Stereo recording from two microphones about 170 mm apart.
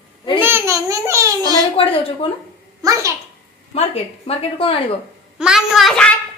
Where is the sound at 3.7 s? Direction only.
35° left (ahead or behind).